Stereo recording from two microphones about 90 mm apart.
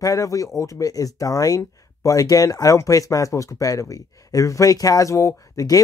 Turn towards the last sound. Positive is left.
turn(degrees=35)  # may be behind; listen again after turning